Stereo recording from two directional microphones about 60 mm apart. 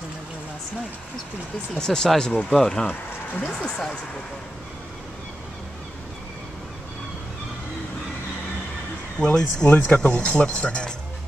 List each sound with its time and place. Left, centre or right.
1.8 s speech: centre
2.9 s speech: left
3.6 s speech: centre
9.2 s speech: centre
9.8 s speech: left